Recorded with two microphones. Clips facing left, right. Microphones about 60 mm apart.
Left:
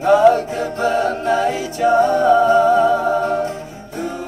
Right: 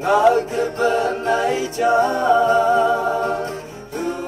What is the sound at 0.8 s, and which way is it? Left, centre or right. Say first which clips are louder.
A capella: left 2 dB; right.